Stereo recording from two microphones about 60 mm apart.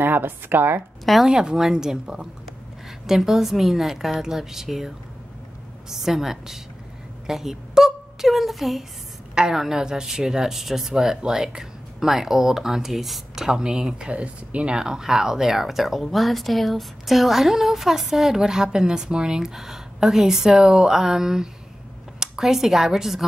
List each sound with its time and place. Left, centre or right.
0.0 s a woman's voice: right
1.2 s a woman's voice: centre